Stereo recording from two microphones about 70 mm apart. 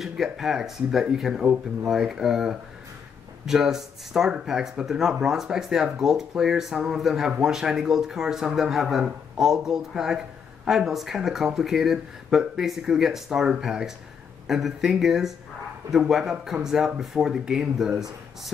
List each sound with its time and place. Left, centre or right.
0.0 s speech: centre